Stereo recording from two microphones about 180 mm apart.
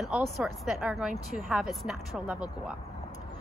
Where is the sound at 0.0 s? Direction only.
Centre (ahead or behind).